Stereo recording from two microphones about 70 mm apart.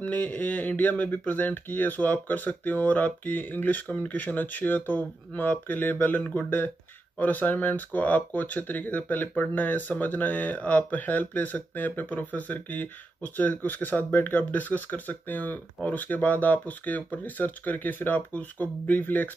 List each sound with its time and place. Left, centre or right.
0.0 s speech: left